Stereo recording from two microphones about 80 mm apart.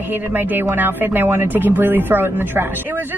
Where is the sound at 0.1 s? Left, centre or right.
Right.